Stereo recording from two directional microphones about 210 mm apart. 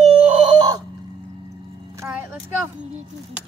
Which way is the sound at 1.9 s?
10° right (ahead or behind).